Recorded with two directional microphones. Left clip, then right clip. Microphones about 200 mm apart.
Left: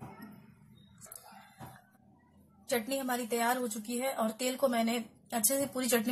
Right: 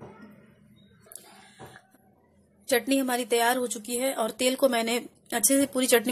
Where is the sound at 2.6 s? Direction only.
45° right (ahead or behind).